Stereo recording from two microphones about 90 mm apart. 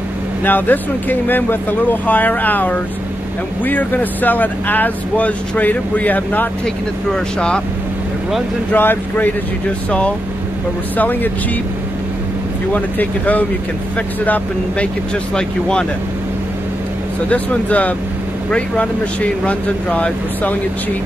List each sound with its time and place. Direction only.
0.4 s speech: 20° left (ahead or behind)
8.7 s speech: 20° left (ahead or behind)
12.7 s speech: 15° left (ahead or behind)
17.3 s speech: 15° left (ahead or behind)
19.4 s speech: 15° left (ahead or behind)